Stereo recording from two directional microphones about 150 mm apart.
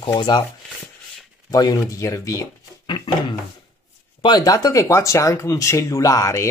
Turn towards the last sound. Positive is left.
turn(degrees=20)  # may be behind; listen again after turning